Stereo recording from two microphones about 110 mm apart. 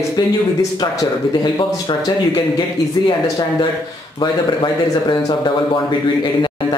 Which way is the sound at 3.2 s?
35° left (ahead or behind).